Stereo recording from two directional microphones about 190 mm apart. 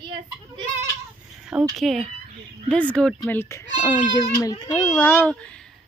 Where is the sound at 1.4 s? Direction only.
Centre (ahead or behind); by 4.9 s 15° left (ahead or behind).